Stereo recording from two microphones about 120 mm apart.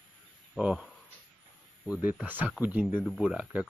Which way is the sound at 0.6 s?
5° right (ahead or behind).